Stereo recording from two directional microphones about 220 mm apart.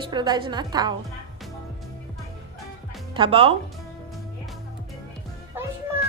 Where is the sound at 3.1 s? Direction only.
25° right (ahead or behind).